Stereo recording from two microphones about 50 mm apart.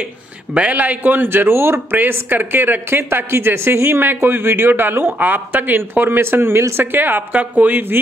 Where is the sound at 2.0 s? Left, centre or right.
Right.